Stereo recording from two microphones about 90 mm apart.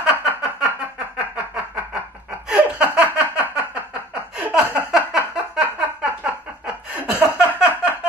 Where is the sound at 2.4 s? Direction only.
15° right (ahead or behind).